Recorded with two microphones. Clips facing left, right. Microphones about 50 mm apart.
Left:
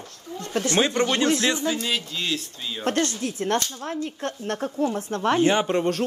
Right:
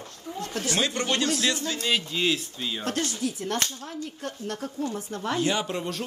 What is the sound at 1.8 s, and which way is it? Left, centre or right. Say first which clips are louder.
Speech: right 2 dB; centre.